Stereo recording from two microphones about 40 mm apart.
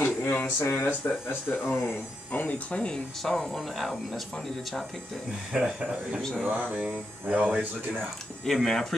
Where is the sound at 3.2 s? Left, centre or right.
Centre.